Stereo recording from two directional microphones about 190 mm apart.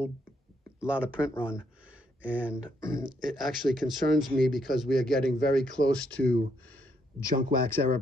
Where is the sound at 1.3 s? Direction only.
15° left (ahead or behind).